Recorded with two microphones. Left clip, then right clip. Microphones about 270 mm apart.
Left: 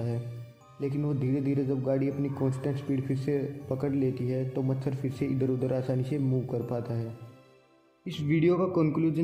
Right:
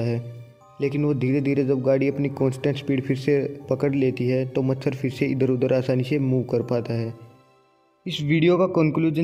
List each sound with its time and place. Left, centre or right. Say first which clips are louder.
0.7 s speech: right 9 dB; right